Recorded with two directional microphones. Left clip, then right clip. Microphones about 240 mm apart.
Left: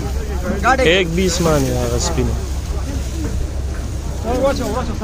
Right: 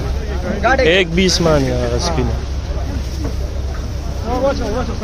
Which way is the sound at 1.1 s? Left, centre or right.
Centre.